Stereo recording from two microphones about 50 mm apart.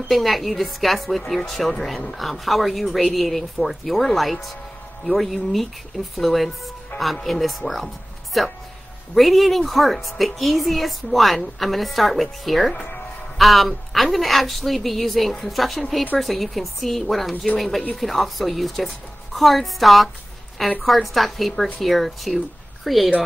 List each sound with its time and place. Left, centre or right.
0.1 s a woman's voice: centre
6.9 s speech: left
7.2 s a woman's voice: centre